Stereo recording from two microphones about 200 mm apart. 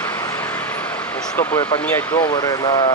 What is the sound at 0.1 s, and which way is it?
Vehicle, 10° left (ahead or behind).